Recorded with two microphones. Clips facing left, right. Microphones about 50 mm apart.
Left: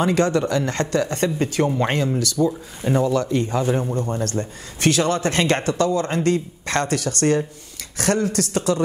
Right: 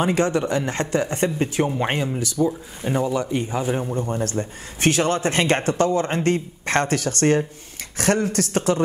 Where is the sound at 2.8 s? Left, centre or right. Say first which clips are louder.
Left 3 dB; centre.